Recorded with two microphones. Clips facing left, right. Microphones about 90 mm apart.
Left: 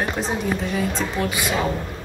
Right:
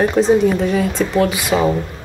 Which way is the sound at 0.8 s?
65° right (ahead or behind).